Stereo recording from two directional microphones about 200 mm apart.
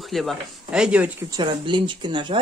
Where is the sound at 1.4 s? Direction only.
25° right (ahead or behind).